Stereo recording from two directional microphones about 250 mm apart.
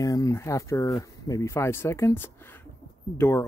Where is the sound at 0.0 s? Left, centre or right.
Centre.